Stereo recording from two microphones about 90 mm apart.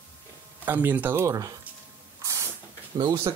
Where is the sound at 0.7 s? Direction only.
20° right (ahead or behind); by 1.5 s 35° right (ahead or behind).